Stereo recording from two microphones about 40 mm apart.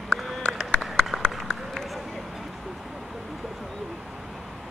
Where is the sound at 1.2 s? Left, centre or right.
Centre.